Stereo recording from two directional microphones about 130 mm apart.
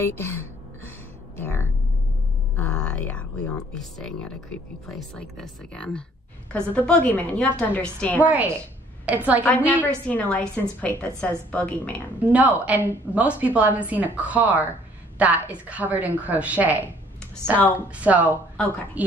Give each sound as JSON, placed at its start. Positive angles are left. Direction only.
{"t": 0.0, "sound": "music", "side_deg": 20}
{"t": 2.5, "sound": "a woman's voice", "side_deg": 10}
{"t": 8.2, "sound": "a woman's voice", "side_deg": -10}
{"t": 9.8, "sound": "a woman's voice", "side_deg": 10}
{"t": 12.2, "sound": "a woman's voice", "side_deg": -10}